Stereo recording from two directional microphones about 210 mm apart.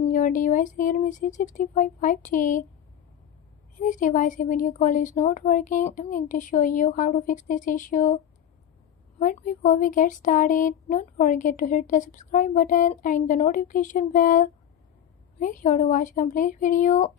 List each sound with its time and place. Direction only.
0.1 s speech: 40° left (ahead or behind)
3.7 s speech: 35° left (ahead or behind)
9.2 s speech: 40° left (ahead or behind)